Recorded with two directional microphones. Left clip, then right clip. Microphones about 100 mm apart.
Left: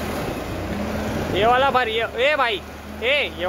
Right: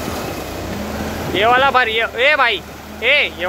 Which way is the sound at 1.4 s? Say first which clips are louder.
Right 5 dB; 20° left (ahead or behind).